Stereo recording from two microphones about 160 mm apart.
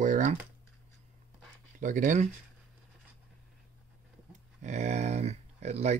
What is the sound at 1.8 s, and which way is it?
Speech, 55° right (ahead or behind).